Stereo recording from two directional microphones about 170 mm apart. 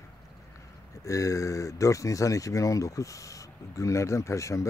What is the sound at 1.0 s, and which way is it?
Speech, 20° left (ahead or behind).